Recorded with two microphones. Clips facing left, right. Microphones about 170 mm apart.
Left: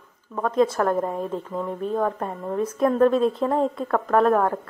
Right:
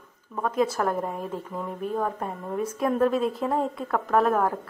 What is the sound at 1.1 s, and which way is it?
Speech, 25° left (ahead or behind).